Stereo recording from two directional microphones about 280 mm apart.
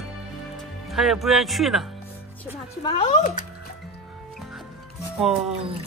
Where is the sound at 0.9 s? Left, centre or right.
Centre.